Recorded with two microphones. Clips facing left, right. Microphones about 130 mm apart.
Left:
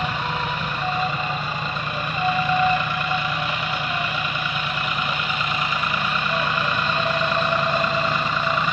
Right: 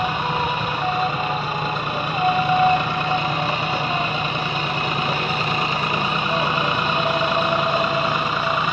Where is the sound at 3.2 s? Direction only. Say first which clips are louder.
Right 4 dB; 40° right (ahead or behind).